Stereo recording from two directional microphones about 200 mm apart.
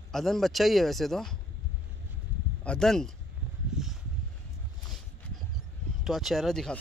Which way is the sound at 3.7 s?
5° right (ahead or behind).